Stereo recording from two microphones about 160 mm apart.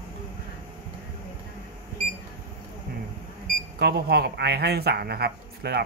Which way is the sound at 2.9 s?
70° right (ahead or behind).